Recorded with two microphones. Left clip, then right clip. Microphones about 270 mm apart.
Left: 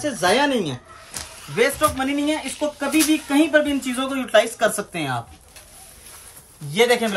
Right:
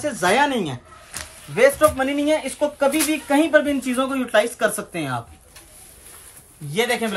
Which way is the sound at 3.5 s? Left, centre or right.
Centre.